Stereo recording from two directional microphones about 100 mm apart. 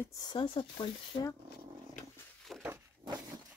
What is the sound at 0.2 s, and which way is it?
Speech, 50° left (ahead or behind).